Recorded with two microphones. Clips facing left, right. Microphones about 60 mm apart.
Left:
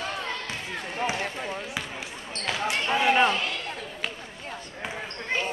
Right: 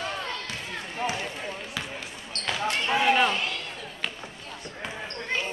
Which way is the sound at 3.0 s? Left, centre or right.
Centre.